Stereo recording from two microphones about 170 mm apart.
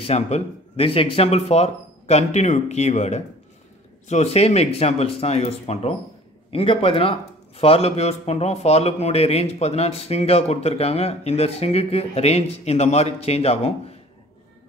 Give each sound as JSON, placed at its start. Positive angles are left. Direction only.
{"t": 0.0, "sound": "a man's voice", "side_deg": 35}